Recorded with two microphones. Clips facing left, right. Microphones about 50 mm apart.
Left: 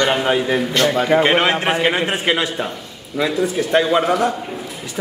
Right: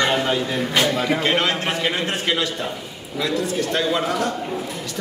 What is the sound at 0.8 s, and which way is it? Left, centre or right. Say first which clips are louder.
Speech: left 4 dB; centre.